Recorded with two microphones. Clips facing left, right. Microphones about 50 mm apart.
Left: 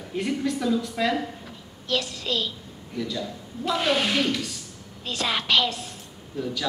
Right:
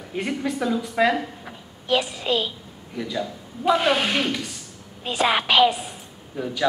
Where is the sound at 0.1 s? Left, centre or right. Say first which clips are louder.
Even; centre.